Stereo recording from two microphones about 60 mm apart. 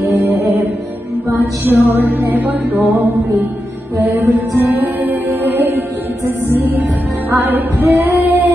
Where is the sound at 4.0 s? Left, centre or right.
Right.